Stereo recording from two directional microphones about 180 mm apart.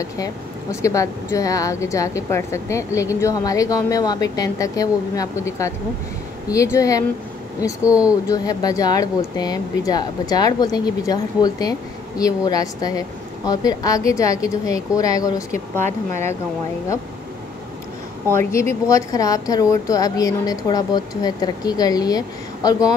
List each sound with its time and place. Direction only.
0.0 s a woman's voice: 15° left (ahead or behind)
7.8 s speech: 5° right (ahead or behind)
8.3 s a woman's voice: 20° left (ahead or behind)
18.3 s a woman's voice: 15° left (ahead or behind)